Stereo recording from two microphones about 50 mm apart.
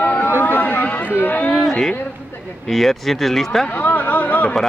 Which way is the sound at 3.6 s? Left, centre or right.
Left.